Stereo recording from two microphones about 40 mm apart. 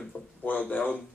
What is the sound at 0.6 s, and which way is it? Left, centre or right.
Speech, left.